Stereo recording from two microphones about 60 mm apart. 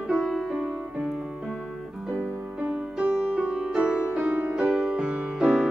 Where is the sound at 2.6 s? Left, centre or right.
Right.